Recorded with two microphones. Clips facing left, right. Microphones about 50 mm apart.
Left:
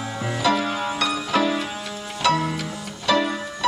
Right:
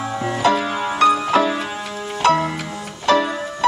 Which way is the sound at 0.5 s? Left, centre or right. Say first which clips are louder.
Right 2 dB; centre.